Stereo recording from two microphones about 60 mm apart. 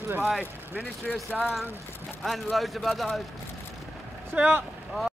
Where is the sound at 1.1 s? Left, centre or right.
Centre.